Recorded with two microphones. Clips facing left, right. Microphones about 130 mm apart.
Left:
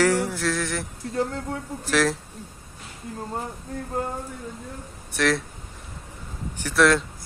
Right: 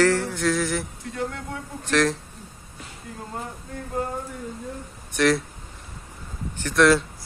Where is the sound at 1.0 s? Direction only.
35° left (ahead or behind).